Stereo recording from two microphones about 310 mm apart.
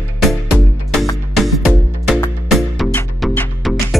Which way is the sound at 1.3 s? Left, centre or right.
Centre.